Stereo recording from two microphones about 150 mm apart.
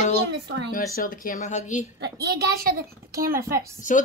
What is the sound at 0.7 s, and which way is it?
A woman's voice, 65° left (ahead or behind).